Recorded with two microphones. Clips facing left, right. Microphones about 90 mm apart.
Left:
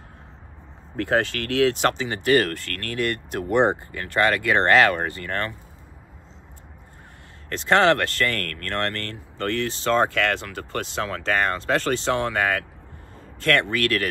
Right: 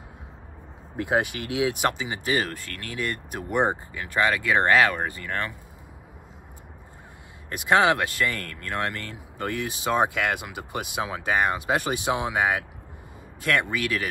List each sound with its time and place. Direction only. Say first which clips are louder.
1.0 s speech: left 2 dB; 15° right (ahead or behind)
1.9 s speech: left 5 dB; 60° left (ahead or behind)
7.5 s speech: left 2 dB; 15° right (ahead or behind)
8.3 s speech: left 3 dB; 65° left (ahead or behind)
8.6 s speech: left 1 dB; 15° right (ahead or behind)
13.7 s speech: left 4 dB; 60° left (ahead or behind)